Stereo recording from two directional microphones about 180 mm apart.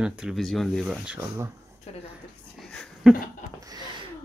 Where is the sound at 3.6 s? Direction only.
20° right (ahead or behind).